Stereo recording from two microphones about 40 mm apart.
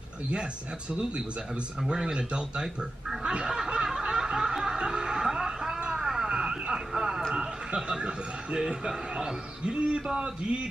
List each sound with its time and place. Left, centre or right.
0.3 s a man's voice: right
3.3 s music: right
5.8 s a sound: centre
7.3 s a man's voice: right